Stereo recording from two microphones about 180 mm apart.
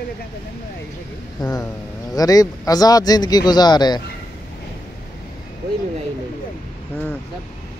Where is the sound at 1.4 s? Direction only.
25° left (ahead or behind).